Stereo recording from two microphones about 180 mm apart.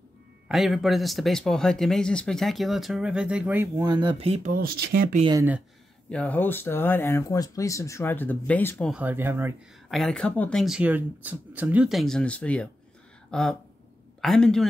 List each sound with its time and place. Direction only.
0.5 s speech: centre (ahead or behind); by 4.5 s 35° right (ahead or behind)
4.5 s speech: 55° right (ahead or behind)
6.0 s speech: 5° left (ahead or behind)
8.9 s speech: 10° right (ahead or behind)
9.8 s speech: centre (ahead or behind)